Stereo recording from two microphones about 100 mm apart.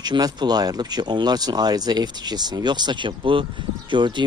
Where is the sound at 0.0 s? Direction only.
45° right (ahead or behind).